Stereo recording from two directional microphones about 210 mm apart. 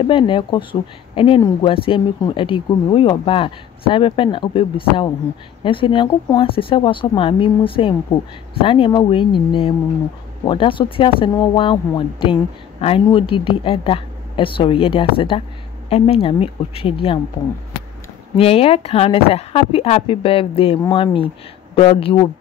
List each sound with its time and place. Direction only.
0.0 s speech: 25° left (ahead or behind)
18.3 s speech: 25° left (ahead or behind)